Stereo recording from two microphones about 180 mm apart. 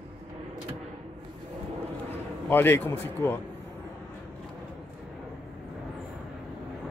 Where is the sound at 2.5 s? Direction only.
10° left (ahead or behind).